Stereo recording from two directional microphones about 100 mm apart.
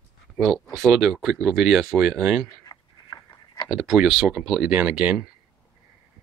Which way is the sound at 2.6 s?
40° left (ahead or behind).